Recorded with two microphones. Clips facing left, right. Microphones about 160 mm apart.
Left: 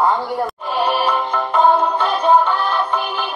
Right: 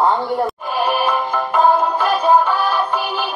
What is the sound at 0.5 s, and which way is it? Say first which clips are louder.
Music: even; centre (ahead or behind).